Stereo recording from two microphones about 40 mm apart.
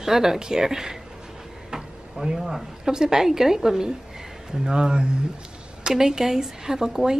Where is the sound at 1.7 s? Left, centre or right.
Centre.